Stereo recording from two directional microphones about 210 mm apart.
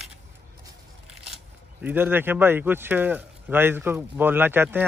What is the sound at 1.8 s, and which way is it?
A man's voice, 10° right (ahead or behind).